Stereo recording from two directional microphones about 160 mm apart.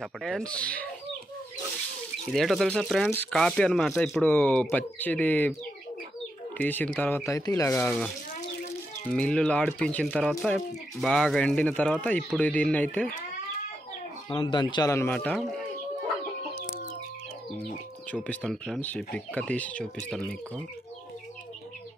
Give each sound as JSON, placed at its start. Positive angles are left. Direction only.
{"t": 0.0, "sound": "speech", "side_deg": 5}
{"t": 2.3, "sound": "speech", "side_deg": 0}
{"t": 6.6, "sound": "speech", "side_deg": 10}
{"t": 9.1, "sound": "speech", "side_deg": 5}
{"t": 14.4, "sound": "speech", "side_deg": 30}
{"t": 18.2, "sound": "speech", "side_deg": 5}